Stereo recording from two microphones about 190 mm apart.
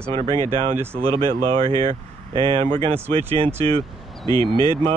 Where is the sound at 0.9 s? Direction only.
30° right (ahead or behind).